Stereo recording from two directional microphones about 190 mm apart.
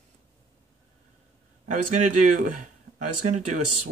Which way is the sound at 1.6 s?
40° right (ahead or behind).